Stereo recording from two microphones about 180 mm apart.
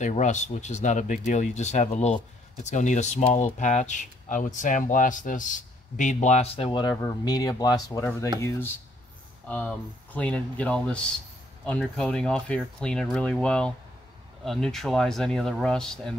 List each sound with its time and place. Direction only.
0.0 s speech: 40° left (ahead or behind); by 16.2 s 5° left (ahead or behind)